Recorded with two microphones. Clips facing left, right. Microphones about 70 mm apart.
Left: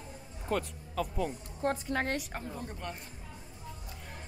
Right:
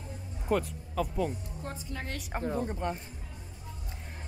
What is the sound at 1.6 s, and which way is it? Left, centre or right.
Speech, left.